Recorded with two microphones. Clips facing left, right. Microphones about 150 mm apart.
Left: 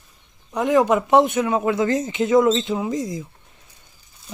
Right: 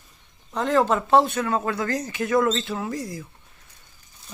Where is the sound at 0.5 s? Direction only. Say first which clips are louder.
Left 4 dB; 15° left (ahead or behind).